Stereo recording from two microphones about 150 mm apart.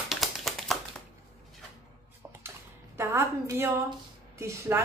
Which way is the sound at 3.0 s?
15° right (ahead or behind).